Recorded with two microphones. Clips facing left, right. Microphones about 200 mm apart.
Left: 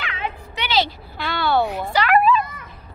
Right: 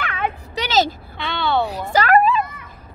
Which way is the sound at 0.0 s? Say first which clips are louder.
Right 4 dB; 55° right (ahead or behind).